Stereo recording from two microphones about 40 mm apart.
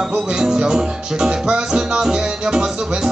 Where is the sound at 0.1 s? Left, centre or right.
Centre.